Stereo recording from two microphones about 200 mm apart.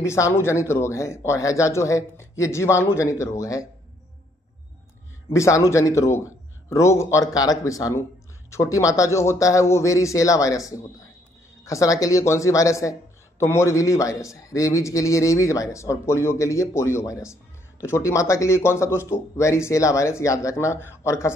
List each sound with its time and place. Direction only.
0.0 s a man's voice: 15° left (ahead or behind)
5.3 s a man's voice: 15° left (ahead or behind)